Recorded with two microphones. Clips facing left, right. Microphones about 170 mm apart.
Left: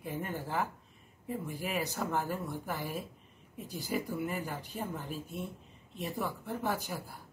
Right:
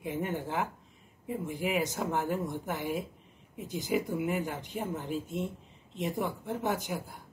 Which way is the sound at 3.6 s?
20° right (ahead or behind).